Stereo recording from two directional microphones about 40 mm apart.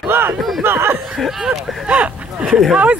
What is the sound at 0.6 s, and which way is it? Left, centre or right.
Chuckle, right.